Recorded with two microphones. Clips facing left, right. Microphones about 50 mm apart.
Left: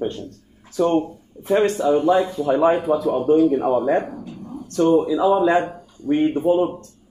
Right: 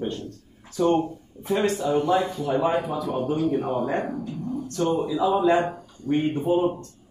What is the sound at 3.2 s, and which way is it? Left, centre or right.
Speech, centre.